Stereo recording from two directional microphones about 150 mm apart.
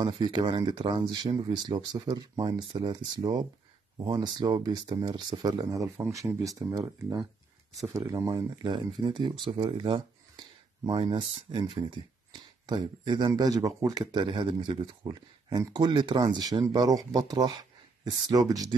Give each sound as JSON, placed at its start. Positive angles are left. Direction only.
{"t": 0.0, "sound": "speech", "side_deg": -30}
{"t": 8.4, "sound": "speech", "side_deg": -35}